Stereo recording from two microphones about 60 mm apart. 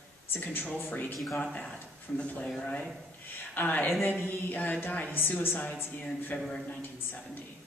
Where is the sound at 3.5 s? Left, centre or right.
Left.